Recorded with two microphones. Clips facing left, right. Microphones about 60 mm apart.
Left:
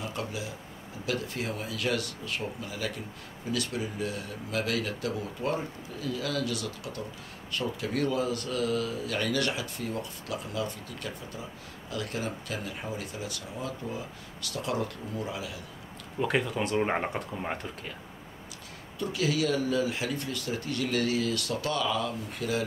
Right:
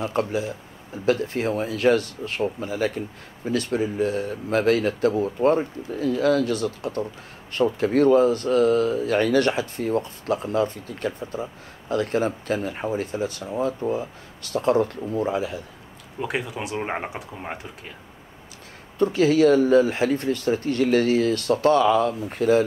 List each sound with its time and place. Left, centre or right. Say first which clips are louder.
0.0 s speech: right 10 dB; right
16.2 s speech: even; centre
18.9 s speech: right 11 dB; right